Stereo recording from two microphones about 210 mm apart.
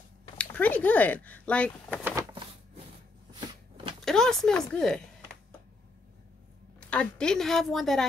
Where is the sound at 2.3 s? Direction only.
25° right (ahead or behind).